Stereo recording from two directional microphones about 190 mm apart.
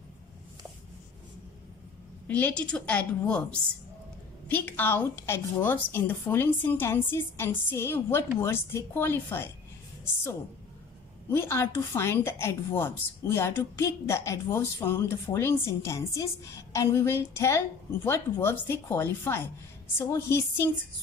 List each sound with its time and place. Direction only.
2.2 s a woman's voice: 10° left (ahead or behind)
11.2 s a woman's voice: 10° left (ahead or behind)